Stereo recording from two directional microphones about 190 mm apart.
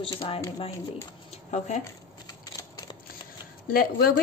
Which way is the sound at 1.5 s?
35° left (ahead or behind).